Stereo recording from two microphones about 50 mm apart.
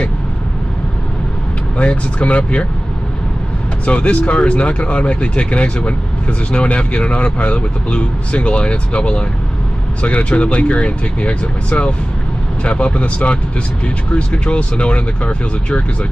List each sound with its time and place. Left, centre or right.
1.8 s speech: left
3.8 s speech: left